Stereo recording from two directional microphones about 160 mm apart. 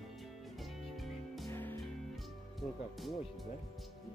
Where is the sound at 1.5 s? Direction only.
10° left (ahead or behind).